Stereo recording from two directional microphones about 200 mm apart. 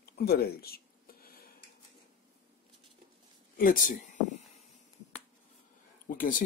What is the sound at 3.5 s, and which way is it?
Speech, 45° left (ahead or behind).